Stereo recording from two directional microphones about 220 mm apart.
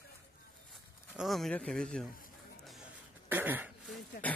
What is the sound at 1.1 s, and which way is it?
Speech, centre (ahead or behind).